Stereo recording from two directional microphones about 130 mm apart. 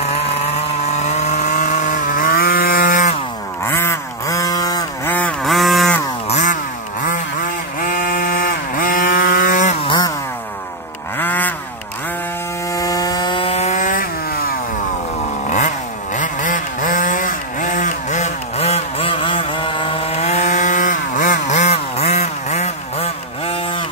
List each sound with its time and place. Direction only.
1.0 s chainsaw: 65° left (ahead or behind); by 3.2 s 85° left
3.6 s a sound: 20° left (ahead or behind)
5.1 s a sound: 10° left (ahead or behind)
5.5 s a sound: centre (ahead or behind)
6.2 s chainsaw: 70° left (ahead or behind); by 7.2 s 85° left
7.8 s vehicle: 90° left
9.8 s chainsaw: 35° left (ahead or behind)
11.1 s vehicle: 15° left (ahead or behind)
12.7 s rub: 30° left (ahead or behind); by 14.0 s 80° left
16.2 s chainsaw: 85° left; by 23.8 s 45° left (ahead or behind)